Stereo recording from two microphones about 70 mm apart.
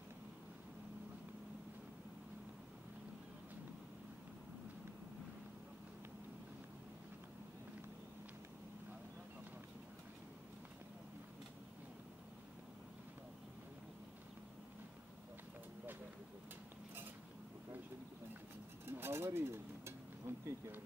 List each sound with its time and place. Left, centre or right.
18.9 s bee: right